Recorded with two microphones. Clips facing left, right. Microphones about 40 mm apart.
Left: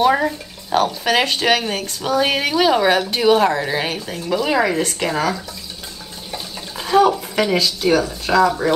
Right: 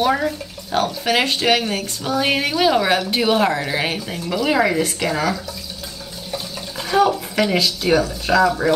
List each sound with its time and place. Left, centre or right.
0.1 s speech: centre
0.7 s speech: centre
6.3 s water: centre
7.5 s speech: centre